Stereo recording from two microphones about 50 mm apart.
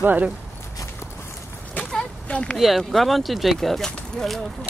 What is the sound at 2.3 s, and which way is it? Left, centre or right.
Speech, left.